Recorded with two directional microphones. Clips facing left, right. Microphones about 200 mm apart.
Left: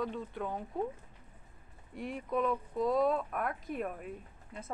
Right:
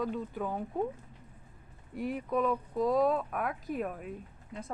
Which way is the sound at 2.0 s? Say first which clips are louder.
Right 3 dB; centre (ahead or behind).